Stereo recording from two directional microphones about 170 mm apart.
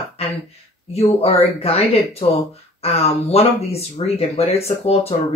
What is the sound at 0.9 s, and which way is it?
Speech, 35° left (ahead or behind).